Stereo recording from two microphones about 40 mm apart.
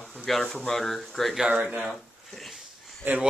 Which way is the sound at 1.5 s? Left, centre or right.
Right.